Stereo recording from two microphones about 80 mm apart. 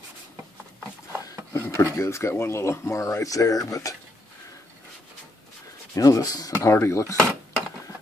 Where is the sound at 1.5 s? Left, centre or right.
Left.